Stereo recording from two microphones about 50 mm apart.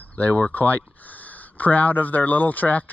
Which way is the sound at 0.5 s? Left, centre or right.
Left.